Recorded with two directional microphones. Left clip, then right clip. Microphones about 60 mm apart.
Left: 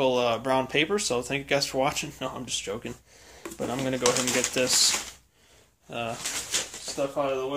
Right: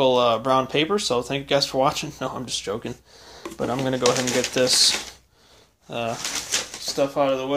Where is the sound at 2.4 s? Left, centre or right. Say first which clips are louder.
Right 4 dB; right.